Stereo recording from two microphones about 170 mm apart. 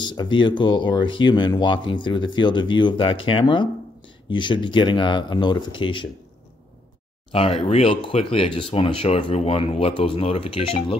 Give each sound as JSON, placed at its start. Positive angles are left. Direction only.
{"t": 0.0, "sound": "speech", "side_deg": 25}
{"t": 7.3, "sound": "speech", "side_deg": 35}